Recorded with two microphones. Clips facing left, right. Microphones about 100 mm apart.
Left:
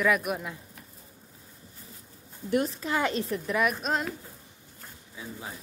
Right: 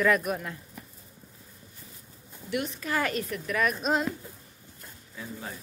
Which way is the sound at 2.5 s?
35° left (ahead or behind).